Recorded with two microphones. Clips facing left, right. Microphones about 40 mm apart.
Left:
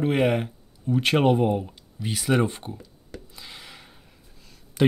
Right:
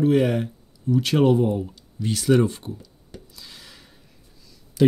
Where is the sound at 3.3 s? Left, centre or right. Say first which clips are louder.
Left 2 dB; left.